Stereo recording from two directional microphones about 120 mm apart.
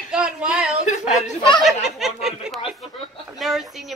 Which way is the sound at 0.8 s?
85° left.